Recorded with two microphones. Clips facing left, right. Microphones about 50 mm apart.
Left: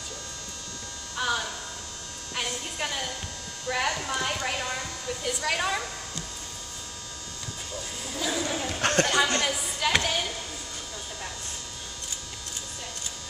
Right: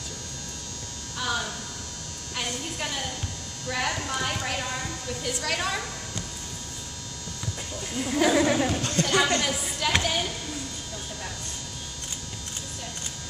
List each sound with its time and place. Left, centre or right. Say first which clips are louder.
1.1 s hum: left 1 dB; centre
2.3 s a woman's voice: even; centre
8.1 s speech: right 9 dB; right
8.8 s speech: left 4 dB; left
9.4 s a woman's voice: even; centre